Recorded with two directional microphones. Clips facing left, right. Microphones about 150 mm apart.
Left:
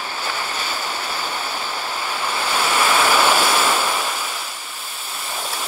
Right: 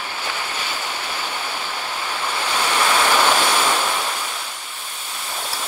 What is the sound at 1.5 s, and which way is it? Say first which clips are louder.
Waves: left 1 dB; 10° left (ahead or behind).